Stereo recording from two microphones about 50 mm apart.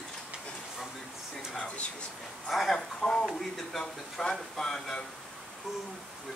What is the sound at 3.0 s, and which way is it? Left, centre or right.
Speech, centre.